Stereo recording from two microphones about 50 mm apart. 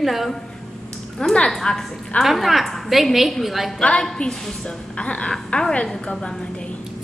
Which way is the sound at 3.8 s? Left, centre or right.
Centre.